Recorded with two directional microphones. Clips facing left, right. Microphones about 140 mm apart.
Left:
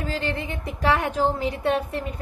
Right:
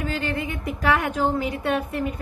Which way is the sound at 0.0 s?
30° left (ahead or behind).